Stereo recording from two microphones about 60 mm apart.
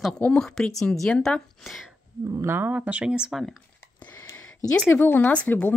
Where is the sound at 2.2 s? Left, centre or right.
Right.